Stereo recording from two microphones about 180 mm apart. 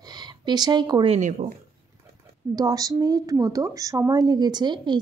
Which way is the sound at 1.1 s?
45° right (ahead or behind).